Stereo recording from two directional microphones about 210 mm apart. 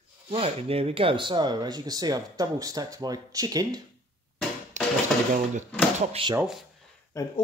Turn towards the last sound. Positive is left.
turn(degrees=15)  # may be behind; listen again after turning